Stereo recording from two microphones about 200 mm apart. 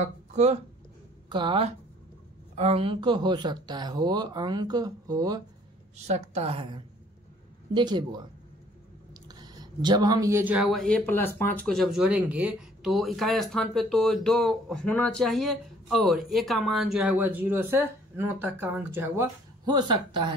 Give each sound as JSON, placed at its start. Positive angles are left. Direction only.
{"t": 0.0, "sound": "speech", "side_deg": -35}
{"t": 1.3, "sound": "speech", "side_deg": -25}
{"t": 5.9, "sound": "a woman's voice", "side_deg": -35}
{"t": 9.3, "sound": "speech", "side_deg": -20}
{"t": 19.6, "sound": "speech", "side_deg": -20}